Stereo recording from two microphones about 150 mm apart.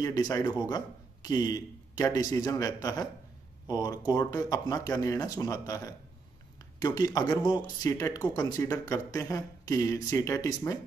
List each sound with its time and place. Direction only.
0.0 s a man's voice: 25° left (ahead or behind)